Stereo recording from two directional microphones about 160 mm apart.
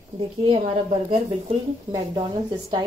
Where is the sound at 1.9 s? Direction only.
25° right (ahead or behind).